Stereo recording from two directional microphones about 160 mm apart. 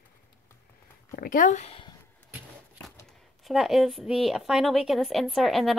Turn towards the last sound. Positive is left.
turn(degrees=0)  # may be behind; listen again after turning